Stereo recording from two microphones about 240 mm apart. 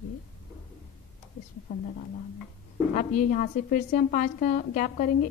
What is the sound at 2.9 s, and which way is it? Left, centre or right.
A woman's voice, left.